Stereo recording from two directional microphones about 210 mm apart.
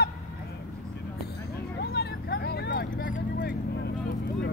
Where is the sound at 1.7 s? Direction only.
50° left (ahead or behind).